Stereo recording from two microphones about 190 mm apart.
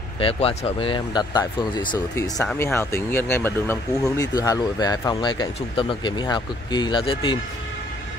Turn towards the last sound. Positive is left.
turn(degrees=25)  # may be behind; listen again after turning